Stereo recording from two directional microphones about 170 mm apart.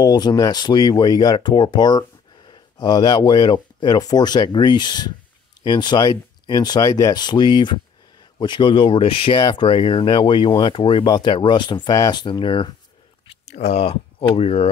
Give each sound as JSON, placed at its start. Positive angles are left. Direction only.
{"t": 0.0, "sound": "speech", "side_deg": 25}
{"t": 13.6, "sound": "speech", "side_deg": 40}